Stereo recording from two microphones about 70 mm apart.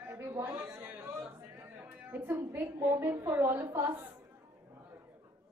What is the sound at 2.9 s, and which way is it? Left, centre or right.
A woman's voice, right.